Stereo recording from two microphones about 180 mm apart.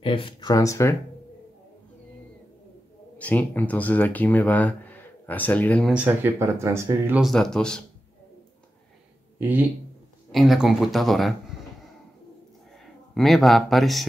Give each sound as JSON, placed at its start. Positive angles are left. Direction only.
{"t": 0.0, "sound": "speech", "side_deg": 30}
{"t": 3.2, "sound": "speech", "side_deg": 10}
{"t": 5.9, "sound": "speech", "side_deg": -10}
{"t": 7.2, "sound": "speech", "side_deg": 0}
{"t": 9.4, "sound": "speech", "side_deg": -10}
{"t": 12.8, "sound": "speech", "side_deg": 0}